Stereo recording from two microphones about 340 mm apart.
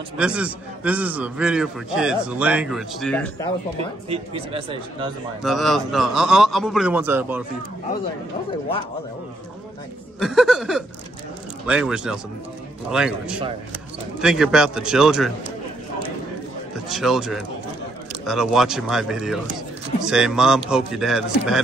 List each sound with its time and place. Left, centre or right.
0.2 s a man's voice: centre
4.1 s speech: centre
5.4 s a man's voice: centre
10.2 s a man's voice: centre
16.7 s a man's voice: centre